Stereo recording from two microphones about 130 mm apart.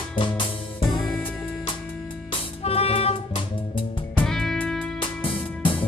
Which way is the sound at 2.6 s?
50° left (ahead or behind).